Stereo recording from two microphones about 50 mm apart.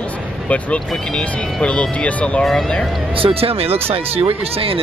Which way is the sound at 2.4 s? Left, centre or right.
Centre.